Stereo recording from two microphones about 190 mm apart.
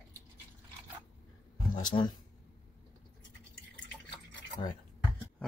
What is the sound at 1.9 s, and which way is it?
Speech, 25° left (ahead or behind).